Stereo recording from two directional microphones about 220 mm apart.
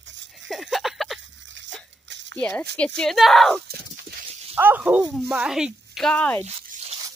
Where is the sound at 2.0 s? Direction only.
55° right (ahead or behind).